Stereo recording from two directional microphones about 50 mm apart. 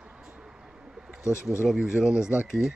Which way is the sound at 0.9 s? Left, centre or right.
Centre.